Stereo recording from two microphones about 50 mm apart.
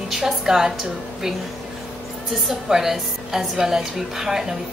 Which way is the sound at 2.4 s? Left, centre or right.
Centre.